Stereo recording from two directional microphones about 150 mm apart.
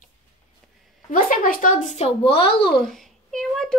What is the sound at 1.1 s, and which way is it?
Speech, 65° left (ahead or behind).